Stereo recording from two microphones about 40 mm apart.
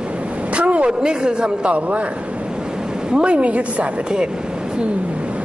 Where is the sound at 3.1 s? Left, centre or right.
Right.